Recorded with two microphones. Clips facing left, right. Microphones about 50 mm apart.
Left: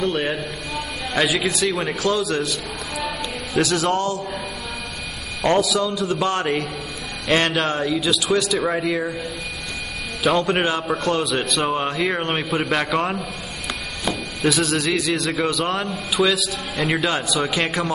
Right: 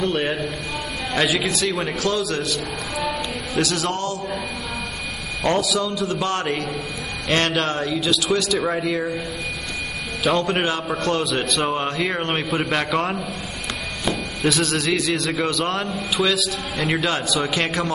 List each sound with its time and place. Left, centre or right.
0.0 s speech: centre
2.0 s a man's voice: centre
3.0 s a sound: centre
3.6 s a man's voice: centre
5.4 s speech: centre
10.2 s speech: centre